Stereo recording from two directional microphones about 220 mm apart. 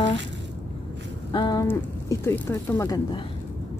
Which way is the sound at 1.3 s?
20° left (ahead or behind).